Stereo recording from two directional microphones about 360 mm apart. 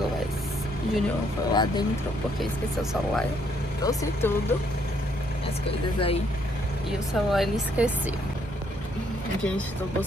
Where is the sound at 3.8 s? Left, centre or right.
Centre.